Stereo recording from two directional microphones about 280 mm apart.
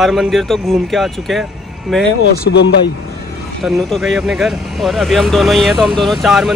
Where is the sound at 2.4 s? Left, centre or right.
Left.